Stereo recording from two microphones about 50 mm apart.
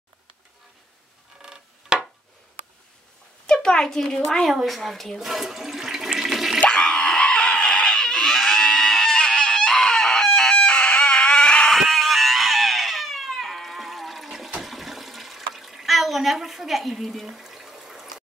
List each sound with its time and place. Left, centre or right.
1.4 s a sound: centre
3.4 s speech: centre
4.5 s speech: centre
5.2 s toilet flush: centre
6.7 s screaming: centre
8.4 s a sound: centre
10.6 s a sound: left
11.7 s cat: centre
14.6 s toilet flush: centre